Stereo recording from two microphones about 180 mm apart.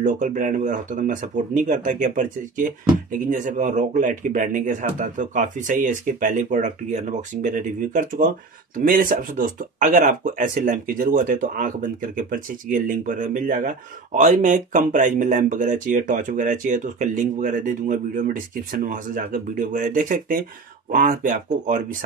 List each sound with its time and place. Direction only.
0.0 s speech: 45° right (ahead or behind)